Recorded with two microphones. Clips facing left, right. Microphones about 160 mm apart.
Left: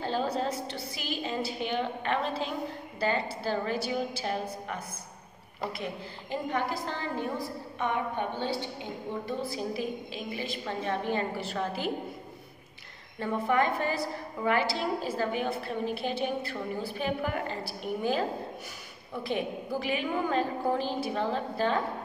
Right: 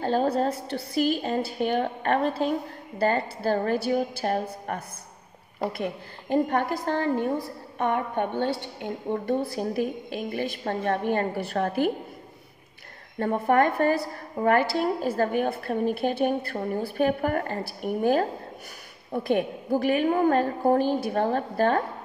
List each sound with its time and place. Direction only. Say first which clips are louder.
0.0 s a woman's voice: right 6 dB; 50° right (ahead or behind)
13.2 s a woman's voice: right 5 dB; 50° right (ahead or behind)
19.1 s a woman's voice: right 7 dB; 50° right (ahead or behind)